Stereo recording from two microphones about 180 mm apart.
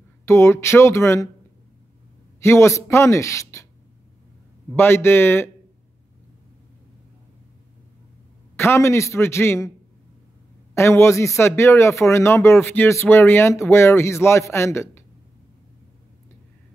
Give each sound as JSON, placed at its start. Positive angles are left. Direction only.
{"t": 0.2, "sound": "speech", "side_deg": 15}
{"t": 2.4, "sound": "speech", "side_deg": 15}
{"t": 4.7, "sound": "speech", "side_deg": 15}
{"t": 8.5, "sound": "speech", "side_deg": 15}
{"t": 10.7, "sound": "speech", "side_deg": 15}